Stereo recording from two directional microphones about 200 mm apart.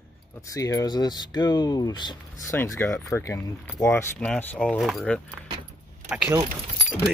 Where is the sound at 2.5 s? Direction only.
10° left (ahead or behind).